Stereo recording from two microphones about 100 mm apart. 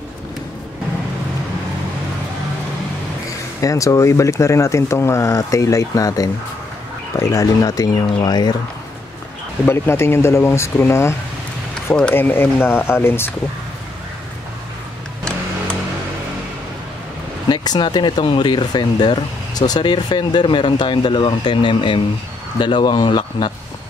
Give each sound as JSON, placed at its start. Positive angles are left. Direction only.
{"t": 3.3, "sound": "speech", "side_deg": 35}
{"t": 9.7, "sound": "speech", "side_deg": 25}
{"t": 11.9, "sound": "speech", "side_deg": 15}
{"t": 17.5, "sound": "speech", "side_deg": 45}